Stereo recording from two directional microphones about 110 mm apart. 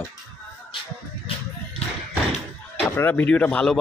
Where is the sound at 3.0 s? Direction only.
20° left (ahead or behind).